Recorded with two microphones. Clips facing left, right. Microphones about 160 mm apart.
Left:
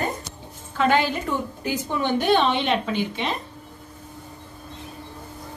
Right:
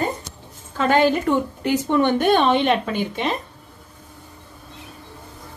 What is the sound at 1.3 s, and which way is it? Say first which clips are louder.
A woman's voice: right 6 dB; 65° right (ahead or behind).